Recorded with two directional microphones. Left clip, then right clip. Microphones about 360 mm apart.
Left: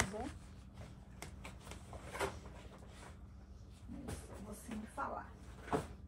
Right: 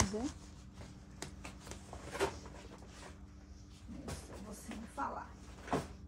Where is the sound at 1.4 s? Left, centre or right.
Right.